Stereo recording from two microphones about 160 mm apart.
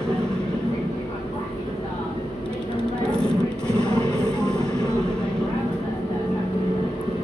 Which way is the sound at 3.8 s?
30° left (ahead or behind).